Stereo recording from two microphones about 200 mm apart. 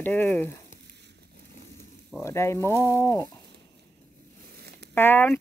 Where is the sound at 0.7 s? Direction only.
55° right (ahead or behind).